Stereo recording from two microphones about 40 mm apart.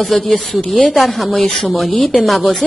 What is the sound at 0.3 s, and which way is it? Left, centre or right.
Speech, left.